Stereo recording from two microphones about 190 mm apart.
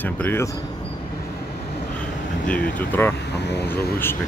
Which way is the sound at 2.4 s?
10° left (ahead or behind).